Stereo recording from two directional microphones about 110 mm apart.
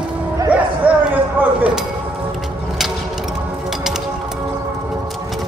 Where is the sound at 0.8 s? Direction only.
15° right (ahead or behind).